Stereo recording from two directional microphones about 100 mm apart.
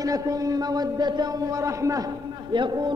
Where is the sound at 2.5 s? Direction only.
50° right (ahead or behind).